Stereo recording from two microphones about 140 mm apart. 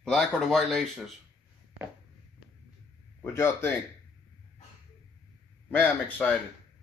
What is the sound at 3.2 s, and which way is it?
Speech, 15° left (ahead or behind).